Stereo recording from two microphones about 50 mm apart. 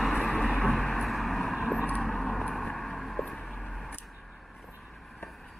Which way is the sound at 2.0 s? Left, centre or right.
Centre.